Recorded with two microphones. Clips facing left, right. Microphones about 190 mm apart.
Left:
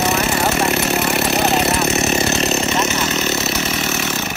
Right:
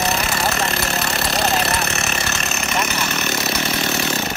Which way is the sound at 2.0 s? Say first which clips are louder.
Left 8 dB; 20° left (ahead or behind).